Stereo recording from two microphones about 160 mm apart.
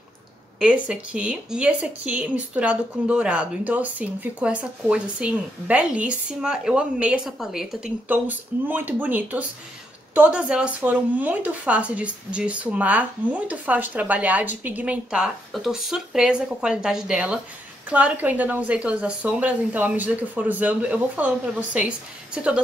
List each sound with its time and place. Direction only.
0.6 s speech: 5° right (ahead or behind)